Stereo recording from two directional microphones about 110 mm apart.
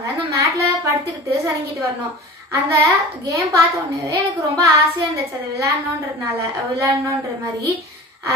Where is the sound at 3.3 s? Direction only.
30° right (ahead or behind).